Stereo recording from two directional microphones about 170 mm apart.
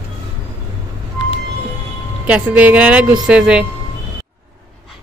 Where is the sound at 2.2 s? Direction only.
10° right (ahead or behind).